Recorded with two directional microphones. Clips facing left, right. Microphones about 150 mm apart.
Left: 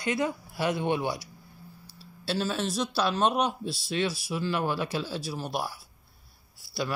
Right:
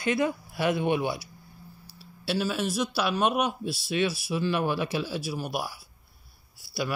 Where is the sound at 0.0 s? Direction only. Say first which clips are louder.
Right 2 dB; 15° left (ahead or behind).